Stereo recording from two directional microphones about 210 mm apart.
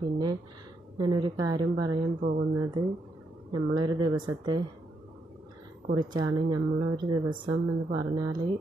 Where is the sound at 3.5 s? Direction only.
20° right (ahead or behind).